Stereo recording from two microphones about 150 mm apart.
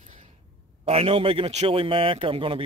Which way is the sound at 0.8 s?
40° right (ahead or behind).